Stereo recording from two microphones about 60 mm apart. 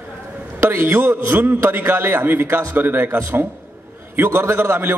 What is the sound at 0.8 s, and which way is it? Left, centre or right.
A man's voice, right.